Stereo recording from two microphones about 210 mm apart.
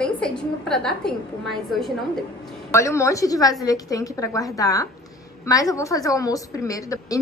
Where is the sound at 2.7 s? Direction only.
15° left (ahead or behind).